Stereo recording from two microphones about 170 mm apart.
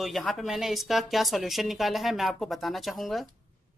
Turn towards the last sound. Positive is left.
turn(degrees=0)  # may be behind; listen again after turning